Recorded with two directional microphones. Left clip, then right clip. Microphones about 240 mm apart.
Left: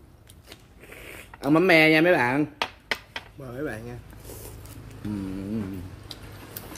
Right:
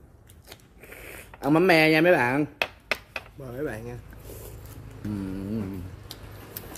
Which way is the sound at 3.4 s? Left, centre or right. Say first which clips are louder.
Even; centre.